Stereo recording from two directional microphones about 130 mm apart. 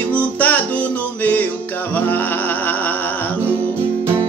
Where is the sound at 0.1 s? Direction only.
15° left (ahead or behind).